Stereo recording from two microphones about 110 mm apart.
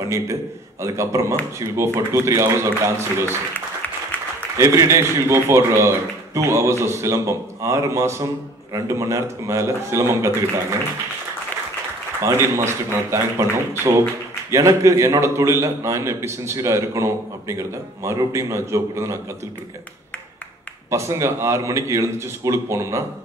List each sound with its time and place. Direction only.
0.1 s a man's voice: 25° right (ahead or behind)
4.6 s a man's voice: 25° right (ahead or behind)
12.2 s a man's voice: 25° right (ahead or behind)
20.9 s a man's voice: 25° right (ahead or behind)